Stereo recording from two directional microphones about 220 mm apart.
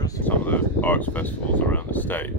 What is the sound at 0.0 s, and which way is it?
Speech, 10° left (ahead or behind).